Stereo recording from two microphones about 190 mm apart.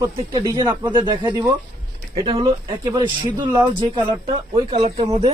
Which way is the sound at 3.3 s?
25° right (ahead or behind).